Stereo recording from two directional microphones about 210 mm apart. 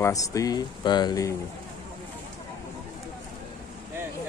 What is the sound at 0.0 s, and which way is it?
Speech, 15° left (ahead or behind).